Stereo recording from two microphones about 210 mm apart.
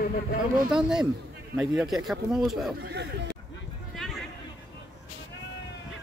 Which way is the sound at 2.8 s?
55° right (ahead or behind).